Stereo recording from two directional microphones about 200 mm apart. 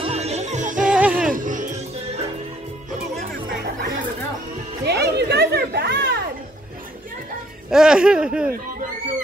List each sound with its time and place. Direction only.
0.0 s music: 30° right (ahead or behind)
0.9 s music: 5° right (ahead or behind)
1.3 s music: 40° right (ahead or behind)
4.8 s chatter: 55° right (ahead or behind)
7.7 s speech: 5° right (ahead or behind)